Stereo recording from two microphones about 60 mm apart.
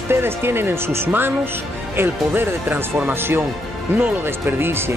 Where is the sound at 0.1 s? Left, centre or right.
Right.